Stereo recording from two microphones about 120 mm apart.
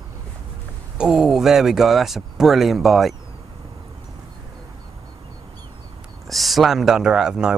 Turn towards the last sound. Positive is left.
turn(degrees=-5)  # may be behind; listen again after turning